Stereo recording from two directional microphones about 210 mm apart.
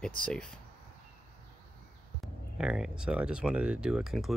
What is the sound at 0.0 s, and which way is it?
Speech, 5° left (ahead or behind).